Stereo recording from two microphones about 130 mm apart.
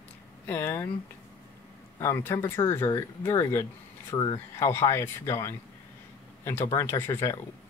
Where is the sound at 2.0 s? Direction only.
20° left (ahead or behind).